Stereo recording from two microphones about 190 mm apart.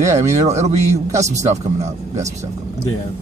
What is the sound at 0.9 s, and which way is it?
Speech, 15° right (ahead or behind).